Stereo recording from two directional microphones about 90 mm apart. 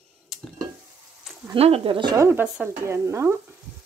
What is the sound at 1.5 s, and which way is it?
Speech, 75° right (ahead or behind).